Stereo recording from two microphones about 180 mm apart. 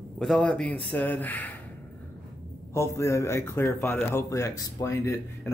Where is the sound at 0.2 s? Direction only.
5° left (ahead or behind).